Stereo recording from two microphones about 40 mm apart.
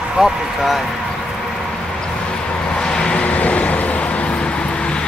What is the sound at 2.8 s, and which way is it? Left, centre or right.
Vehicle, centre.